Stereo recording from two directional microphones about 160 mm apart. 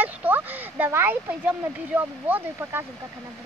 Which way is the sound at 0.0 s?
10° right (ahead or behind).